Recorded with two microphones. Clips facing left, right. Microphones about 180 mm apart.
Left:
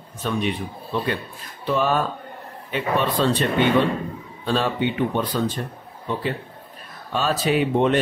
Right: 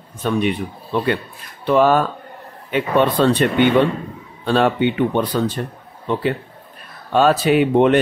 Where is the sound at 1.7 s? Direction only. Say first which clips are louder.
Right 7 dB; 70° right (ahead or behind).